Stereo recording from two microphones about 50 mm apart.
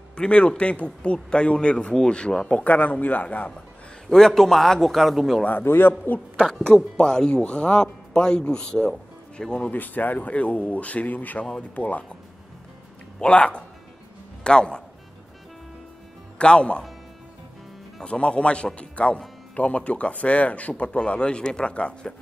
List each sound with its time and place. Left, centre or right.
0.1 s speech: left
2.7 s speech: left
4.3 s a man's voice: centre
5.6 s a man's voice: left
6.6 s speech: centre
9.7 s speech: left
13.2 s speech: left
16.3 s speech: left
18.0 s speech: left